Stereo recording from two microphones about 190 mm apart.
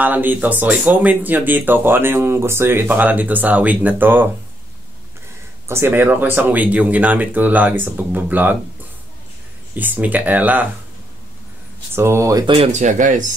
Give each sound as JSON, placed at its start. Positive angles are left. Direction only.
{"t": 0.0, "sound": "speech", "side_deg": -10}
{"t": 5.7, "sound": "speech", "side_deg": -10}
{"t": 9.8, "sound": "speech", "side_deg": -10}
{"t": 11.9, "sound": "speech", "side_deg": -15}
{"t": 12.7, "sound": "speech", "side_deg": -40}